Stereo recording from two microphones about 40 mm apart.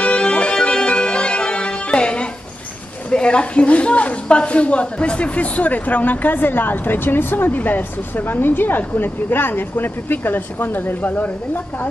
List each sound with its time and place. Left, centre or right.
0.0 s music: left
3.1 s a woman's voice: left